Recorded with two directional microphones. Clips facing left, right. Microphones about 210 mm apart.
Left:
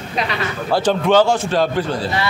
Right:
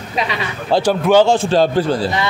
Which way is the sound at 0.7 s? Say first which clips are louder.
Right 2 dB; 10° right (ahead or behind).